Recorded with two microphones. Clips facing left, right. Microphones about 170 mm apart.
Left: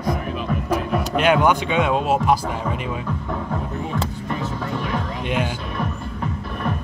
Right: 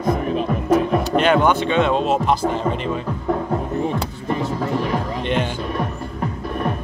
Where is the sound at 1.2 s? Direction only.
10° left (ahead or behind).